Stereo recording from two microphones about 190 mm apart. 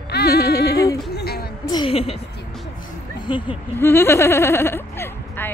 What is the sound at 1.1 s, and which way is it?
Music, 55° left (ahead or behind).